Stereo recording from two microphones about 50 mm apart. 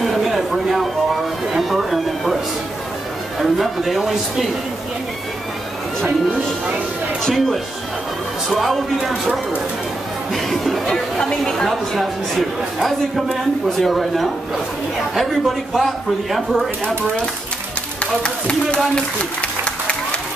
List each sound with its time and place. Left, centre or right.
0.0 s speech: centre
3.3 s speech: centre
7.2 s a woman's voice: centre
8.5 s speech: centre
11.1 s a woman's voice: centre
12.0 s speech: centre
18.2 s speech: centre
19.6 s applause: left